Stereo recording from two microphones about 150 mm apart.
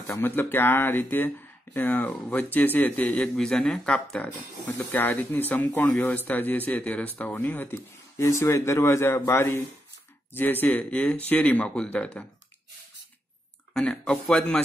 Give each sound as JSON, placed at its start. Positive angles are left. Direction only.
{"t": 0.0, "sound": "speech", "side_deg": 15}
{"t": 13.7, "sound": "a man's voice", "side_deg": 5}